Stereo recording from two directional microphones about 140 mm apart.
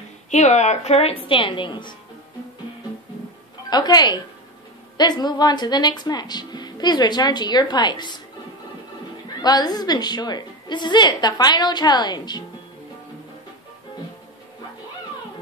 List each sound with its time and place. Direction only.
0.3 s speech: 55° left (ahead or behind); by 2.0 s 35° left (ahead or behind)
3.7 s a woman's voice: 30° left (ahead or behind)
9.4 s a woman's voice: 30° left (ahead or behind)